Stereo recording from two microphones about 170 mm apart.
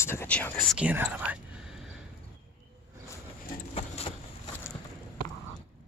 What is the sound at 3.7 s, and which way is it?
Vehicle, 35° left (ahead or behind).